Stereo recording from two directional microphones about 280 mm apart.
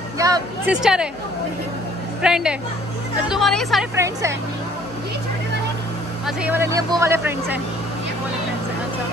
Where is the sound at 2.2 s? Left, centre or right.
Centre.